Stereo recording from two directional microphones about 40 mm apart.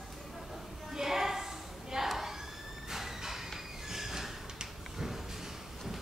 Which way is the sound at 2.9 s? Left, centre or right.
Centre.